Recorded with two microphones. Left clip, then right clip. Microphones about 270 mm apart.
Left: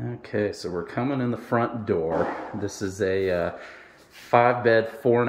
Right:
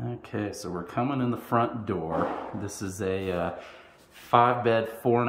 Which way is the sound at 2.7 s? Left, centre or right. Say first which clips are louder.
Left 6 dB; right.